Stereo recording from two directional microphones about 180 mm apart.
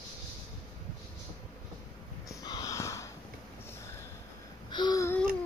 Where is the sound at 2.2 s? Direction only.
20° left (ahead or behind).